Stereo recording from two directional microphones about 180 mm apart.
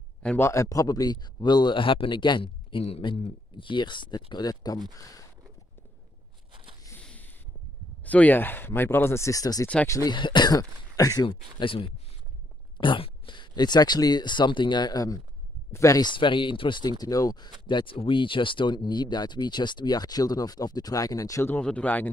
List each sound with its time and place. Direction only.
0.2 s a man's voice: 5° left (ahead or behind)
0.5 s speech: 15° left (ahead or behind)
6.5 s a sound: 30° right (ahead or behind)
7.0 s a sound: 5° left (ahead or behind)
8.0 s speech: 10° left (ahead or behind)
9.7 s speech: 5° left (ahead or behind)
9.9 s speech: 25° left (ahead or behind); by 22.1 s 10° left (ahead or behind)